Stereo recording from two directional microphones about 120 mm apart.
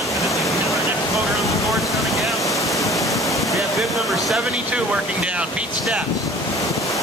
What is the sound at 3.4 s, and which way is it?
Speech, centre (ahead or behind).